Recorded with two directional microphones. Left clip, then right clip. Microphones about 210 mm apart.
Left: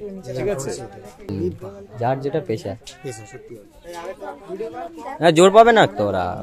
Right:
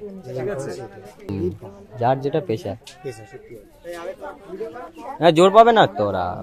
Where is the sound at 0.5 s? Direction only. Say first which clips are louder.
Left 4 dB; 40° left (ahead or behind).